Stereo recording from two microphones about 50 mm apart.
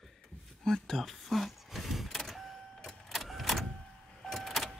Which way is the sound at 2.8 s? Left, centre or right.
Centre.